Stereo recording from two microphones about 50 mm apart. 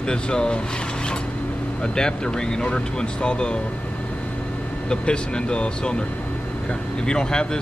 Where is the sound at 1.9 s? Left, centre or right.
Centre.